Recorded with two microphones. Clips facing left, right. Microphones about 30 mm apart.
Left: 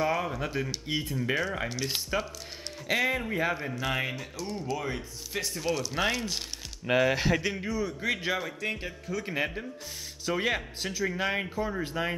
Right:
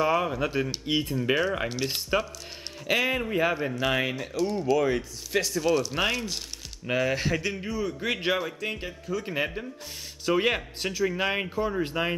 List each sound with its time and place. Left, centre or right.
0.0 s speech: right
1.4 s speech: centre
4.4 s speech: right
5.3 s speech: right
5.8 s speech: centre
6.9 s speech: centre
7.6 s speech: centre
8.0 s speech: right
8.4 s speech: centre
10.2 s speech: right